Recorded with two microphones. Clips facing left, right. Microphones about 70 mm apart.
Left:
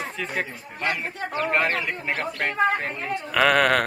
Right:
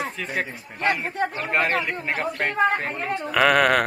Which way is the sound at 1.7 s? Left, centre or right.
Centre.